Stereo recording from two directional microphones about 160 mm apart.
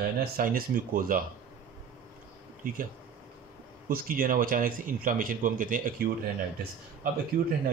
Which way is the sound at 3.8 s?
65° right (ahead or behind).